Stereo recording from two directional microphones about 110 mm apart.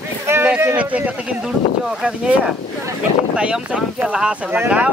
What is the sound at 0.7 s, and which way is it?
Speech, 15° right (ahead or behind).